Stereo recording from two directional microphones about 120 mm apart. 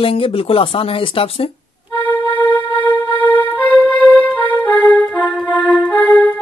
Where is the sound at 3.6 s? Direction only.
10° right (ahead or behind).